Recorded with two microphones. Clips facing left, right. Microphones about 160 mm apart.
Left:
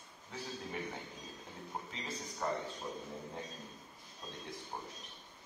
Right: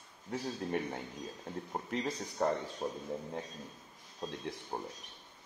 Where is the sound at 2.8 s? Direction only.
55° right (ahead or behind).